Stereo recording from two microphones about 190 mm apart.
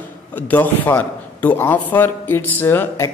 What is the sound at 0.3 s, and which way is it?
A woman's voice, 10° left (ahead or behind).